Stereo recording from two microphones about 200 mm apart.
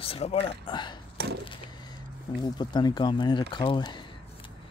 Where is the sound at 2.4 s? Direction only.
20° left (ahead or behind).